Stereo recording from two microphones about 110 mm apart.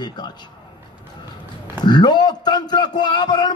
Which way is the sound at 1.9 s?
40° left (ahead or behind).